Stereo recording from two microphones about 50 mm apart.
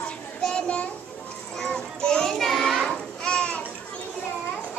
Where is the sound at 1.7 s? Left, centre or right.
Centre.